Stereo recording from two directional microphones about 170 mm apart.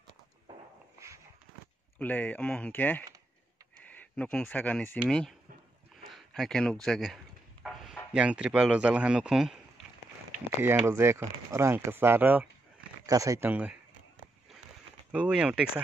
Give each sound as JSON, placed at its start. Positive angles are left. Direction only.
{"t": 0.9, "sound": "a sound", "side_deg": -15}
{"t": 2.0, "sound": "speech", "side_deg": 10}
{"t": 4.9, "sound": "speech", "side_deg": 0}
{"t": 10.9, "sound": "speech", "side_deg": -15}
{"t": 15.1, "sound": "speech", "side_deg": -5}